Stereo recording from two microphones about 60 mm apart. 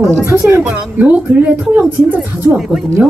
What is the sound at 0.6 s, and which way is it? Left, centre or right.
A woman's voice, right.